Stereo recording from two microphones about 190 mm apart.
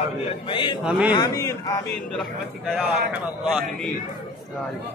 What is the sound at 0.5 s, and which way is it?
Speech, 25° left (ahead or behind).